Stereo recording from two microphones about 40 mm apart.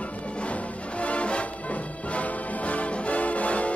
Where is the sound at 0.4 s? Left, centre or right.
Left.